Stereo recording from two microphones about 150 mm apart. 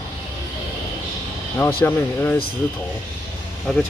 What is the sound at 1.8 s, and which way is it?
Speech, 15° left (ahead or behind).